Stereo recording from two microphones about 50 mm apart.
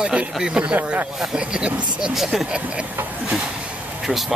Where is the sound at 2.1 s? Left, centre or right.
Centre.